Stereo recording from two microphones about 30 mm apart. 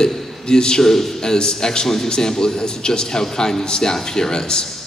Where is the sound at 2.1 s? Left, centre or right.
Left.